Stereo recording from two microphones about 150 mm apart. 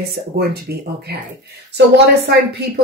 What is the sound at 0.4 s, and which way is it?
Speech, 90° right.